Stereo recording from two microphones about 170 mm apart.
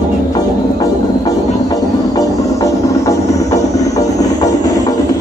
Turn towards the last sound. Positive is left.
turn(degrees=20)  # may be behind; listen again after turning